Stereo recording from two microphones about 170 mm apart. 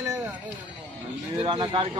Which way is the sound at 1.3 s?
30° right (ahead or behind).